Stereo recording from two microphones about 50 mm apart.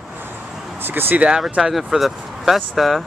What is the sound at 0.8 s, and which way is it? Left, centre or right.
Speech, right.